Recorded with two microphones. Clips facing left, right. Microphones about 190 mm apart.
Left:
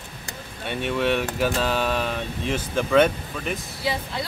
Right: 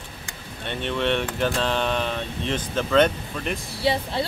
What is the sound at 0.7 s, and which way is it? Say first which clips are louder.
Speech: left 1 dB; 10° left (ahead or behind).